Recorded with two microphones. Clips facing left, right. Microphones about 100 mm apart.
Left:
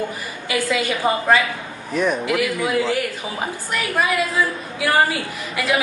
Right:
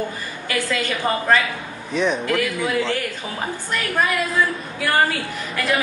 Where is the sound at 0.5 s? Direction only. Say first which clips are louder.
Left 2 dB; 15° left (ahead or behind).